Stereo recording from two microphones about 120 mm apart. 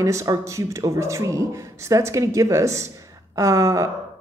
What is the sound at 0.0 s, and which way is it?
Speech, 25° right (ahead or behind).